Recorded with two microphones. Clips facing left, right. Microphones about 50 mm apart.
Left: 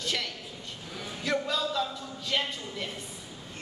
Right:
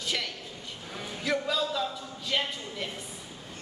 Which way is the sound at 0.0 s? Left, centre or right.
Centre.